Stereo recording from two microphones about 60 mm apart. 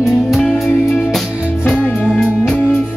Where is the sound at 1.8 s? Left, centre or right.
Left.